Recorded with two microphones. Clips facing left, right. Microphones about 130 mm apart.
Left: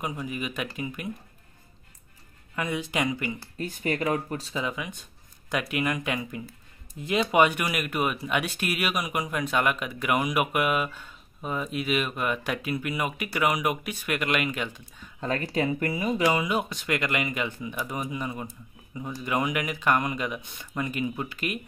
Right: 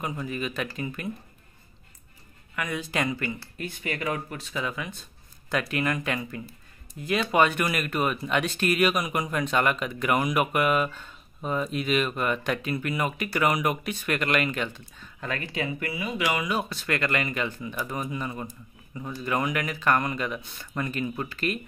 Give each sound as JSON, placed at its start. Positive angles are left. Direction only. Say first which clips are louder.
{"t": 0.0, "sound": "speech", "louder": "right 1 dB", "side_deg": 15}
{"t": 2.5, "sound": "speech", "louder": "left 1 dB", "side_deg": 25}
{"t": 3.5, "sound": "speech", "louder": "left 4 dB", "side_deg": 35}
{"t": 4.6, "sound": "speech", "louder": "right 2 dB", "side_deg": 15}
{"t": 15.1, "sound": "speech", "louder": "left 4 dB", "side_deg": 35}
{"t": 16.4, "sound": "speech", "louder": "left 1 dB", "side_deg": 15}